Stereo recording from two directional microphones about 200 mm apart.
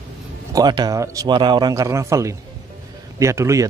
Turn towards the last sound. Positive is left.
turn(degrees=-15)  # may be behind; listen again after turning